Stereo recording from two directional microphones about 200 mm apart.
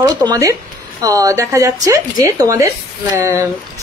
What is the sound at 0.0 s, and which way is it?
Speech, 20° right (ahead or behind).